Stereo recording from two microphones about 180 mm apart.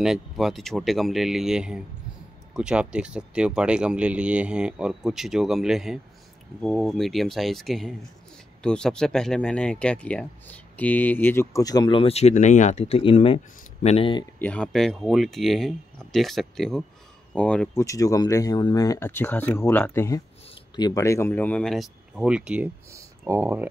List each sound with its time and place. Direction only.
0.0 s speech: centre (ahead or behind); by 14.2 s 30° left (ahead or behind)
14.4 s speech: 5° left (ahead or behind)
17.8 s speech: 20° left (ahead or behind); by 23.7 s 10° right (ahead or behind)